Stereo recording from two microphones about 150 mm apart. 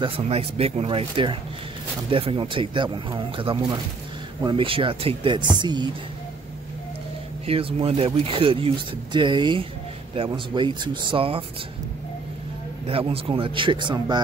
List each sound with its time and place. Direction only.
0.0 s speech: 40° right (ahead or behind)
7.4 s speech: 40° right (ahead or behind)
12.8 s speech: 40° right (ahead or behind)